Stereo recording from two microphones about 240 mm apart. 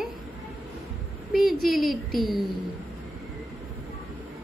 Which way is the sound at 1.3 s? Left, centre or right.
Centre.